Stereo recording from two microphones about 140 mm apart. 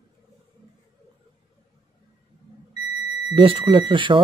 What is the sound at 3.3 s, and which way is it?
Speech, 40° right (ahead or behind).